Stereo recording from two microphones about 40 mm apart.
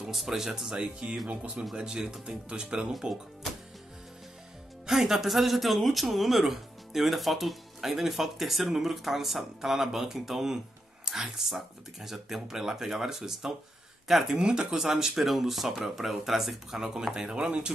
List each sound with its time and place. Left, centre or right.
0.1 s speech: centre
0.7 s speech: right
2.2 s speech: right
4.8 s speech: centre
14.4 s speech: centre
17.3 s speech: right